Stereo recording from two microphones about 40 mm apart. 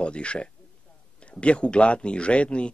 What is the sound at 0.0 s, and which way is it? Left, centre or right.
Speech, left.